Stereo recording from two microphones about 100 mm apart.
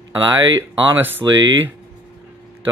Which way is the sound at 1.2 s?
45° right (ahead or behind).